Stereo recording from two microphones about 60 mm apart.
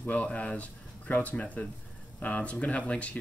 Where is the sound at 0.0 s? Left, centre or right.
Left.